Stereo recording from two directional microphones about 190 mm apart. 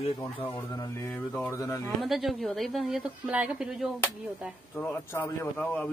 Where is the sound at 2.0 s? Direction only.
Centre (ahead or behind).